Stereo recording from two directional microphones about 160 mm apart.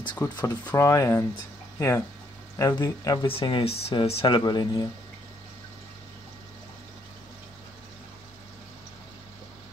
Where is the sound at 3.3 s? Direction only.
35° left (ahead or behind).